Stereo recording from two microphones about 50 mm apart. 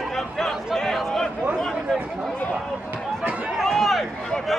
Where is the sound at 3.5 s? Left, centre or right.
Centre.